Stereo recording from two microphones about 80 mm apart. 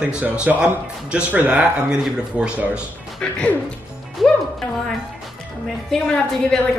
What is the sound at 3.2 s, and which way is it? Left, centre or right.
Speech, centre.